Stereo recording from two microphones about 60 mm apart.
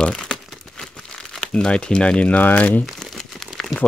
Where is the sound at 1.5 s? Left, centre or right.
Centre.